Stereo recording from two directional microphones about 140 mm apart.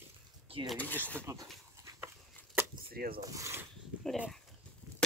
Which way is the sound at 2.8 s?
90° right.